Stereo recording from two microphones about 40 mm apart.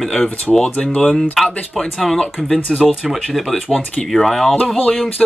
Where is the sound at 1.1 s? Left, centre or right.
Centre.